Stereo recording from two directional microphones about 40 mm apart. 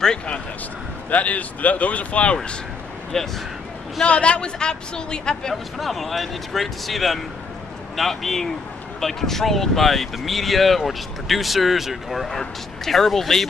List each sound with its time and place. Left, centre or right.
1.1 s speech: left
3.1 s speech: centre
4.0 s a woman's voice: left
5.5 s speech: centre
12.3 s speech: centre